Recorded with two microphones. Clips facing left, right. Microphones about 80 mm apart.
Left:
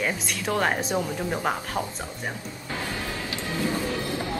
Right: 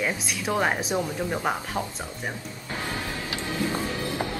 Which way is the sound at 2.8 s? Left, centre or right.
Right.